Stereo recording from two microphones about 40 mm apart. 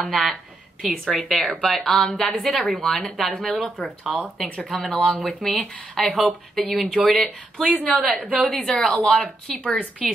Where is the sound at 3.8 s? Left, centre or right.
Left.